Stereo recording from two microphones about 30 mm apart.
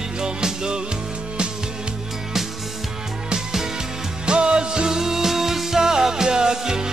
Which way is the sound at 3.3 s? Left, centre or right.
Centre.